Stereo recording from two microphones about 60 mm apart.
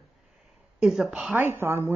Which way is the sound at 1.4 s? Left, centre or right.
Right.